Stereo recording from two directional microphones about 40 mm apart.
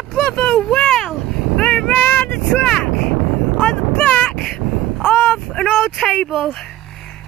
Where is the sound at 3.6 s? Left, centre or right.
Left.